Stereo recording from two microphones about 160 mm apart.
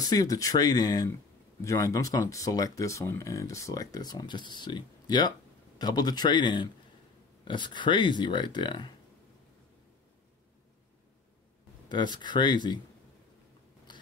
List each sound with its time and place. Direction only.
0.0 s speech: 25° left (ahead or behind)
11.9 s speech: 25° left (ahead or behind)